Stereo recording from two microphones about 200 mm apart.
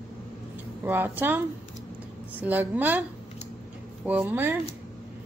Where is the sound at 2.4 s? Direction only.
10° right (ahead or behind).